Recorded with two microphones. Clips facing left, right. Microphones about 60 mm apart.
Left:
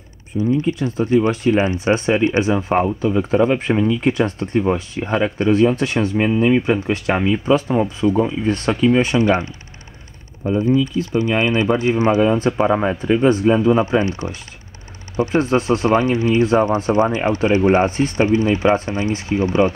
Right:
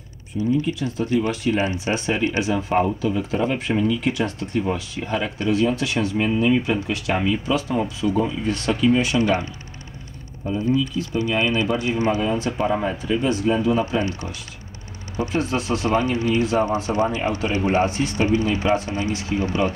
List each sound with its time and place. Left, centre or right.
0.3 s speech: left
10.4 s speech: left